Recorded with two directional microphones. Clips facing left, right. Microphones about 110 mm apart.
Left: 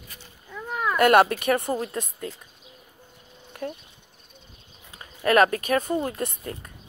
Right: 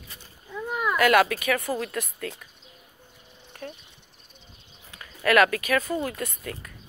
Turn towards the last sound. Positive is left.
turn(degrees=25)  # may be behind; listen again after turning